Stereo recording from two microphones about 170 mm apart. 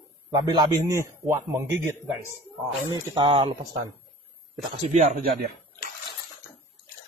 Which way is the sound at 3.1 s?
25° right (ahead or behind).